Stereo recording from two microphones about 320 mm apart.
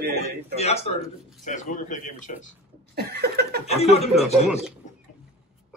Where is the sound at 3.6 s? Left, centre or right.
Centre.